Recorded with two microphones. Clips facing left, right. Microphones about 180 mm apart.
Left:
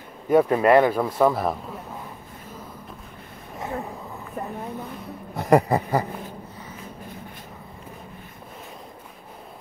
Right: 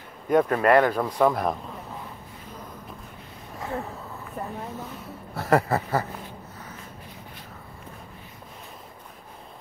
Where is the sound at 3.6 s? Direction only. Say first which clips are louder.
Left 1 dB; 15° left (ahead or behind).